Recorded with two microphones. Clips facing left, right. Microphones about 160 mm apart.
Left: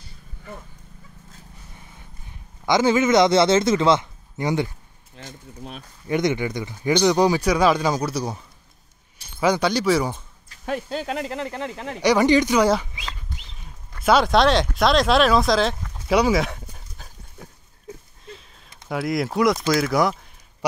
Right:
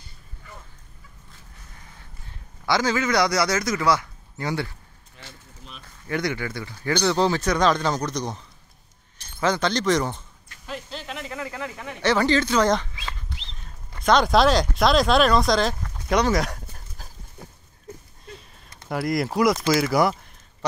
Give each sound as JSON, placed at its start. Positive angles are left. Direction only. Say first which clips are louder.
{"t": 2.2, "sound": "a man's voice", "louder": "left 2 dB", "side_deg": 20}
{"t": 5.2, "sound": "speech", "louder": "left 8 dB", "side_deg": 50}
{"t": 6.0, "sound": "speech", "louder": "left 5 dB", "side_deg": 20}
{"t": 9.4, "sound": "speech", "louder": "left 3 dB", "side_deg": 10}
{"t": 10.6, "sound": "speech", "louder": "left 8 dB", "side_deg": 55}
{"t": 11.3, "sound": "speech", "louder": "left 3 dB", "side_deg": 25}
{"t": 12.0, "sound": "speech", "louder": "left 4 dB", "side_deg": 15}
{"t": 13.5, "sound": "a sound", "louder": "even", "side_deg": 5}
{"t": 18.9, "sound": "speech", "louder": "left 1 dB", "side_deg": 0}